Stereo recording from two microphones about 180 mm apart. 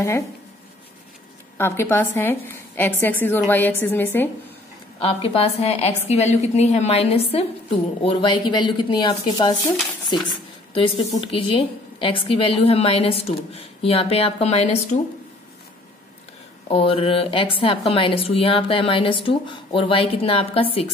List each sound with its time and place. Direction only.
1.6 s a woman's voice: 15° left (ahead or behind)
5.0 s a woman's voice: 30° left (ahead or behind)
16.6 s a woman's voice: 30° left (ahead or behind)